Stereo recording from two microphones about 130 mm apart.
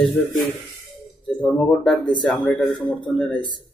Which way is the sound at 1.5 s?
5° left (ahead or behind).